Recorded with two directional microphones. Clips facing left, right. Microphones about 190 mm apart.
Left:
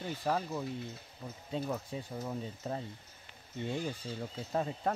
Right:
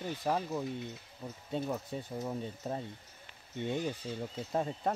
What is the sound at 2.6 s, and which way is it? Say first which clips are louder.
Speech: right 1 dB; 5° right (ahead or behind).